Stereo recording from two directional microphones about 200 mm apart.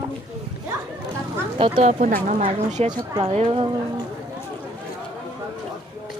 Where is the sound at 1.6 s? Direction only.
25° right (ahead or behind).